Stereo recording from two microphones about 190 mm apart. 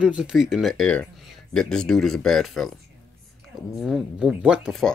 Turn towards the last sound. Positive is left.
turn(degrees=0)  # may be behind; listen again after turning